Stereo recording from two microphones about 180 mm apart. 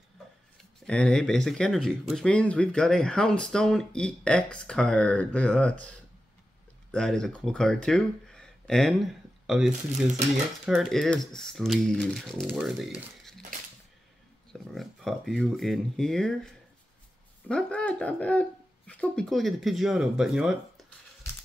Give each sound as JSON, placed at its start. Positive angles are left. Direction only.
{"t": 0.6, "sound": "speech", "side_deg": 5}
{"t": 6.9, "sound": "speech", "side_deg": 5}
{"t": 9.7, "sound": "speech", "side_deg": -40}
{"t": 10.6, "sound": "speech", "side_deg": 0}
{"t": 14.5, "sound": "speech", "side_deg": 0}